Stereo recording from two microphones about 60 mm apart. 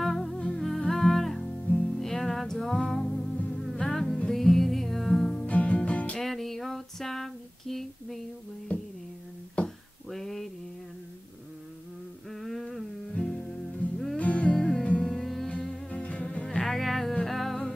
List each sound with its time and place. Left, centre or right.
0.0 s humming: centre
0.4 s humming: centre
0.7 s music: centre
5.5 s music: left
6.1 s female singing: centre
8.7 s a sound: left
10.0 s a sound: centre
12.3 s humming: centre
13.1 s music: centre
15.0 s music: centre
15.6 s music: centre
16.4 s music: centre